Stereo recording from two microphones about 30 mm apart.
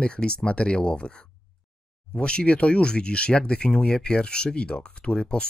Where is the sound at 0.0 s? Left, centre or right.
Left.